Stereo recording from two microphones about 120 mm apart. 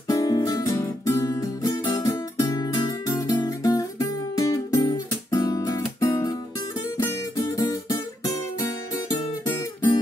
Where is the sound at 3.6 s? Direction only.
25° left (ahead or behind).